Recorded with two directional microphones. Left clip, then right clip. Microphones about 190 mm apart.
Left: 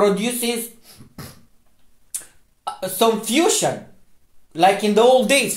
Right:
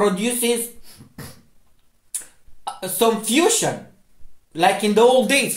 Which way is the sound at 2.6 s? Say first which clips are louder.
Left 1 dB; 20° left (ahead or behind).